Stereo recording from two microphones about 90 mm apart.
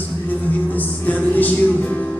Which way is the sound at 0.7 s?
20° left (ahead or behind).